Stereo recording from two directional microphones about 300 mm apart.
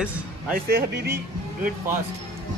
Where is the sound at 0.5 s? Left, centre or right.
Right.